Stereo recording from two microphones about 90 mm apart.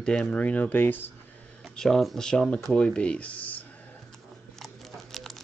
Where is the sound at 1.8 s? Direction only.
5° left (ahead or behind).